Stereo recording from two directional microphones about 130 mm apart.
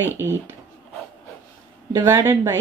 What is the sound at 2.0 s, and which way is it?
Speech, 20° right (ahead or behind).